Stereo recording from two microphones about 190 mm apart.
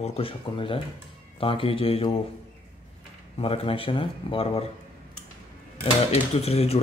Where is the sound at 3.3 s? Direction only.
30° left (ahead or behind).